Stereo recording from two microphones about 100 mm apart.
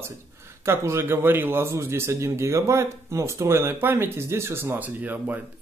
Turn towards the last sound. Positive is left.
turn(degrees=-20)  # may be behind; listen again after turning